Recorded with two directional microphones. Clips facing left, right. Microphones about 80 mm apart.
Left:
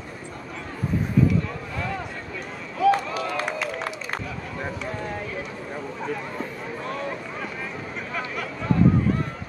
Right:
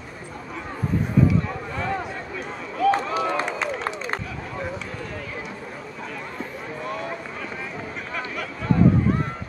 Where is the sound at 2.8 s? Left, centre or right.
Centre.